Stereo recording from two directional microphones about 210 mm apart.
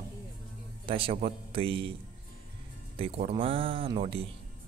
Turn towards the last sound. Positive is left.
turn(degrees=-25)  # may be behind; listen again after turning